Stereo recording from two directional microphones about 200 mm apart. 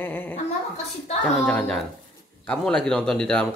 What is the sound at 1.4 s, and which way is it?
Speech, centre (ahead or behind).